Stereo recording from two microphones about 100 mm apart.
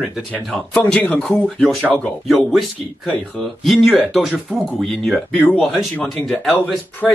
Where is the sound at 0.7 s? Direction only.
15° left (ahead or behind).